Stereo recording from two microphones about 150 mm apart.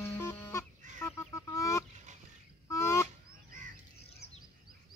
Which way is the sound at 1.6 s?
20° left (ahead or behind).